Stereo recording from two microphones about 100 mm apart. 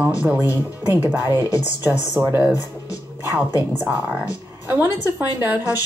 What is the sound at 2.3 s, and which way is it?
A woman's voice, 20° right (ahead or behind).